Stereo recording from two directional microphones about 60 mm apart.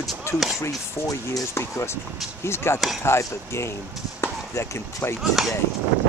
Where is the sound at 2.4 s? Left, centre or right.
Left.